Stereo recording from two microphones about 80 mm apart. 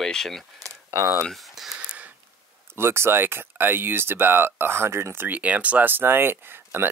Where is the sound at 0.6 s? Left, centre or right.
Right.